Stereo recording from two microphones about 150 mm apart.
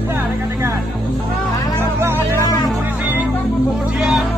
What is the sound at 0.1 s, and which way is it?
Music, 20° right (ahead or behind).